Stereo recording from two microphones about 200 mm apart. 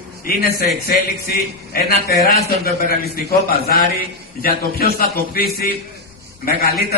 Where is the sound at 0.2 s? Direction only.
50° left (ahead or behind).